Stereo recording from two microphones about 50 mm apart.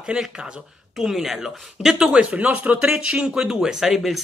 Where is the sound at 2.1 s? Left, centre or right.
Right; by 4.2 s centre.